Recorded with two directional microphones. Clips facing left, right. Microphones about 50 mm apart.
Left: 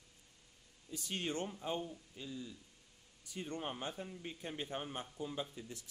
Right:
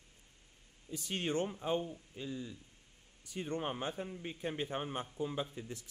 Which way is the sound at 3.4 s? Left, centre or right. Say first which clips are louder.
Right 4 dB; right.